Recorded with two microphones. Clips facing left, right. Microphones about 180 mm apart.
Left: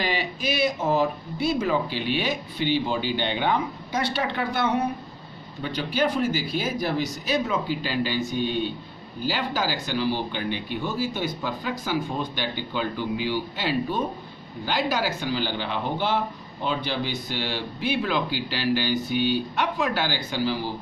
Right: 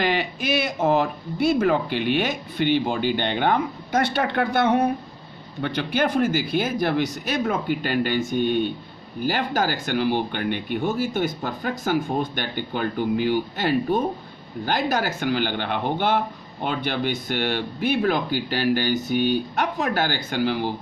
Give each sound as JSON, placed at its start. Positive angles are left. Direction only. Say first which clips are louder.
{"t": 0.0, "sound": "speech", "louder": "right 3 dB", "side_deg": -55}